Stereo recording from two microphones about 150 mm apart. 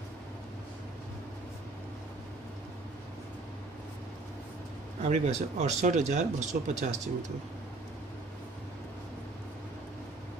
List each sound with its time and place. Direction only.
5.0 s speech: 50° right (ahead or behind)